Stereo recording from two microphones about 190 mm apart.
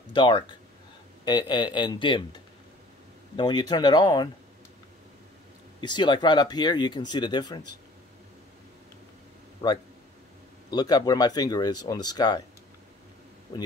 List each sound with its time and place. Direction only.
0.1 s speech: 25° left (ahead or behind)
3.3 s speech: 20° left (ahead or behind)
5.8 s speech: 20° left (ahead or behind)
9.6 s a man's voice: 15° left (ahead or behind)
13.5 s speech: 20° left (ahead or behind)